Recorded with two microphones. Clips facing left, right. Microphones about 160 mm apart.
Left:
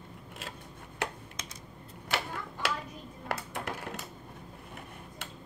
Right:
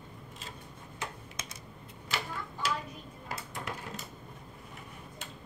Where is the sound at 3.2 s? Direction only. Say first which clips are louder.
Left 4 dB; 65° left (ahead or behind).